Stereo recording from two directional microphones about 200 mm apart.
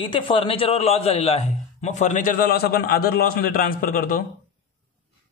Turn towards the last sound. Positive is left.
turn(degrees=45)  # may be behind; listen again after turning